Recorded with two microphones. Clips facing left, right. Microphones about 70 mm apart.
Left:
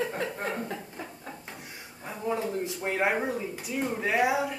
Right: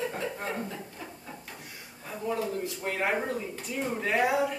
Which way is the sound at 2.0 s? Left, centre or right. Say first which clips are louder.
Left 1 dB; left.